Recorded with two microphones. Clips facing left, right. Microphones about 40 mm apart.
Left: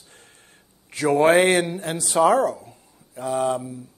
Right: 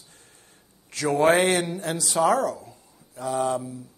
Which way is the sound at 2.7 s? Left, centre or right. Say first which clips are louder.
Even; left.